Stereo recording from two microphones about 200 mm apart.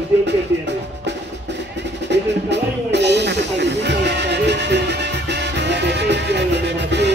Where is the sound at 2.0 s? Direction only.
60° right (ahead or behind).